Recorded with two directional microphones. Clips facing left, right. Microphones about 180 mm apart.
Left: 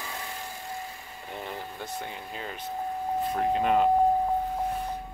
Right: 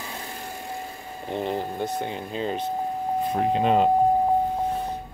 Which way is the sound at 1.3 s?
25° right (ahead or behind).